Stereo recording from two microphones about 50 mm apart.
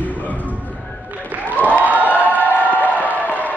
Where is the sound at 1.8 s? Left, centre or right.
Right.